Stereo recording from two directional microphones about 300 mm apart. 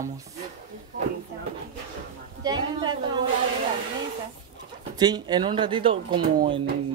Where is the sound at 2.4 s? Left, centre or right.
Centre.